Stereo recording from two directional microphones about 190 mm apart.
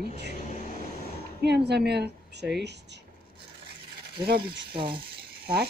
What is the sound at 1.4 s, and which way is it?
Speech, 60° right (ahead or behind).